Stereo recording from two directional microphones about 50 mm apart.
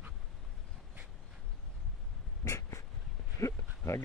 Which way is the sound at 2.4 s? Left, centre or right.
Left.